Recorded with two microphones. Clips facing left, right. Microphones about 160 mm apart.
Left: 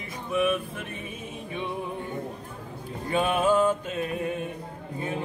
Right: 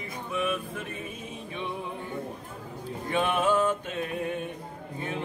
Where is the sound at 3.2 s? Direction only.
10° left (ahead or behind).